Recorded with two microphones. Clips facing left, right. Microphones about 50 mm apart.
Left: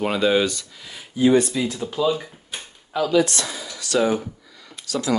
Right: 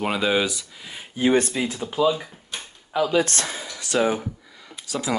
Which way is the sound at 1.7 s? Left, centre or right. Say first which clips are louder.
Right 1 dB; centre.